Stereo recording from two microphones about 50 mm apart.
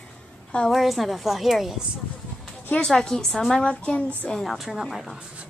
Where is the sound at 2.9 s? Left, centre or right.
Centre.